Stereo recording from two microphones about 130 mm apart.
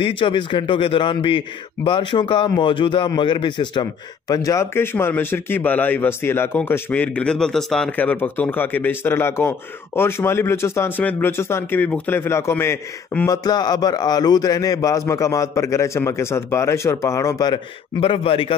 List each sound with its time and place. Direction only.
0.0 s a man's voice: 40° left (ahead or behind)
4.3 s a man's voice: 25° left (ahead or behind)
13.3 s a man's voice: 30° left (ahead or behind)
18.0 s a man's voice: 45° left (ahead or behind)